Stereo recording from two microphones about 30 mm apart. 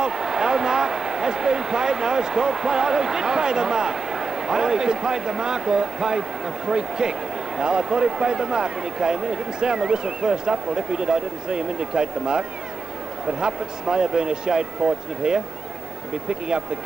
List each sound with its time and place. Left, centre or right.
0.0 s speech: right